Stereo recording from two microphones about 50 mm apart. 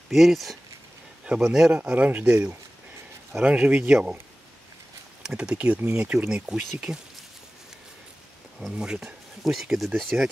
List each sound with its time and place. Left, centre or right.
0.1 s speech: centre
2.0 s speech: right
3.3 s speech: right
5.2 s speech: centre
5.8 s speech: right
6.1 s speech: centre
8.7 s speech: centre
9.4 s speech: centre